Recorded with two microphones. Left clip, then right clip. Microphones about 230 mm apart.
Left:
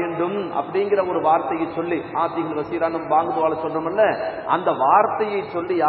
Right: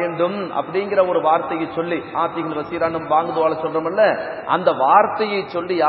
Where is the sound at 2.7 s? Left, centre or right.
Right.